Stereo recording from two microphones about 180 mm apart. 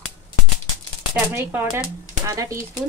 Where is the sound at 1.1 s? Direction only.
10° right (ahead or behind).